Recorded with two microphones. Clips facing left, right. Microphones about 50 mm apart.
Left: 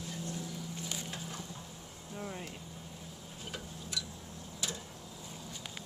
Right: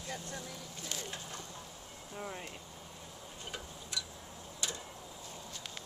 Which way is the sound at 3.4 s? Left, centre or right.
Centre.